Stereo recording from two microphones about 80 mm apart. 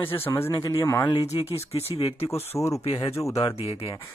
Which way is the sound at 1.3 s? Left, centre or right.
Left.